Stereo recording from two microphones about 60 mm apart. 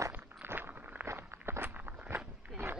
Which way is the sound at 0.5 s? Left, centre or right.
Right.